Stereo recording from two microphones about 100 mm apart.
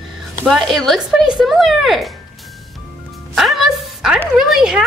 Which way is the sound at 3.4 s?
Centre (ahead or behind).